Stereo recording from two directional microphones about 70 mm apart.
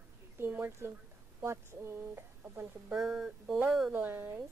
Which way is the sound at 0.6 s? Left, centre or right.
Right.